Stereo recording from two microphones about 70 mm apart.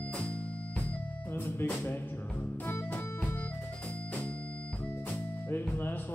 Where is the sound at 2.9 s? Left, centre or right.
Left.